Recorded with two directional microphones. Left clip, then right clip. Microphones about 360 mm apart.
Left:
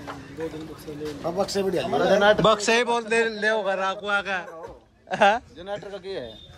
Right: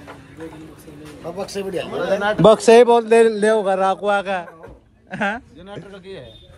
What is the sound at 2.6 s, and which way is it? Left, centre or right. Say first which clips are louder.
A man's voice: right 11 dB; centre.